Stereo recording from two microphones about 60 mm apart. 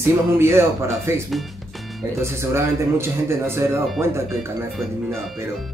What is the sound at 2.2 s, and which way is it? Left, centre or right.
Speech, right.